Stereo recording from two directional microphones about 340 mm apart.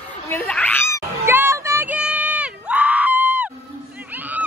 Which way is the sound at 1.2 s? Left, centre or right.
Centre.